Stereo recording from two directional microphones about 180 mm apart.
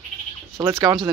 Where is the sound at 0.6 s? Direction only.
20° right (ahead or behind).